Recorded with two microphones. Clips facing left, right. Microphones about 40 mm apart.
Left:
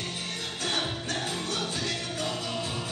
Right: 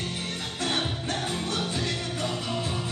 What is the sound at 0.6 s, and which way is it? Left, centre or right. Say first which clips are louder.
Music: right 2 dB; centre.